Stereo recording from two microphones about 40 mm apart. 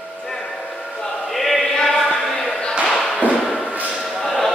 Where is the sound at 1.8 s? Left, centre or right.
Centre.